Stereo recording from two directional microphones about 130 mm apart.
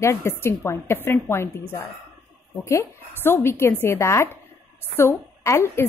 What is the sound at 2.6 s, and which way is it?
Speech, 20° left (ahead or behind).